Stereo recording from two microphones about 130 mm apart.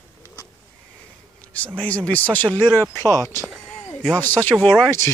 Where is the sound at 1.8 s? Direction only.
10° left (ahead or behind).